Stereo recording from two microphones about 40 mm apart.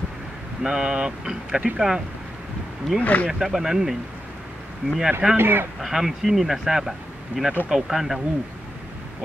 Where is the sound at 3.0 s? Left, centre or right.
Left.